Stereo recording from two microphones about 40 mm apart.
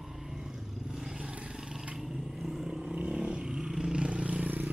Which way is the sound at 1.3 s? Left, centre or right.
Right.